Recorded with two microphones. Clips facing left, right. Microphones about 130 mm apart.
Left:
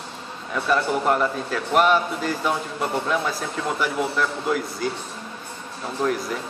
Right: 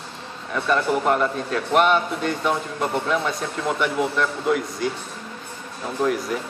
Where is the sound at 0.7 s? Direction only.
Centre (ahead or behind).